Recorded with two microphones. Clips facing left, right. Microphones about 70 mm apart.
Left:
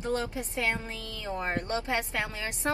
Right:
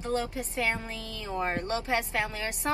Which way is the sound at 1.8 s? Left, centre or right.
Right.